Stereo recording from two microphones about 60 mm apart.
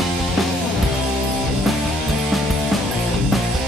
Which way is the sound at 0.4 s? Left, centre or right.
Centre.